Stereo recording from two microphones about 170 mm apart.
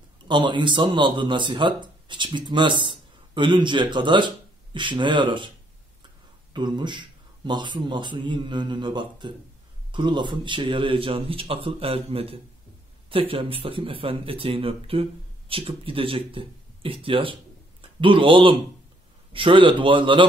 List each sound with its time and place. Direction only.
0.3 s speech: 25° right (ahead or behind)
6.5 s a man's voice: 25° right (ahead or behind)